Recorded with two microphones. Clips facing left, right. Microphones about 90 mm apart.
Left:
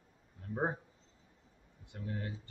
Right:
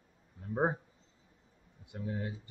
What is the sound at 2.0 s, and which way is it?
Speech, 15° right (ahead or behind).